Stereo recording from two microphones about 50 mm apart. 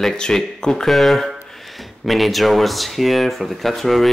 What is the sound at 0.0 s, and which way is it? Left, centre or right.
Speech, centre.